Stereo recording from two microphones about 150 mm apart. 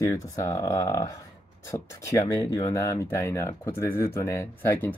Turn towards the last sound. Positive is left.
turn(degrees=15)  # may be behind; listen again after turning